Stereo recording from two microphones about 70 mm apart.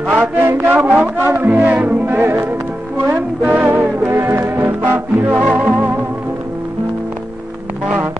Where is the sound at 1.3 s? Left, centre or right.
Right.